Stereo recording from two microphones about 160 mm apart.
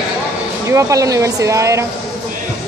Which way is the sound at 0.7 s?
20° right (ahead or behind).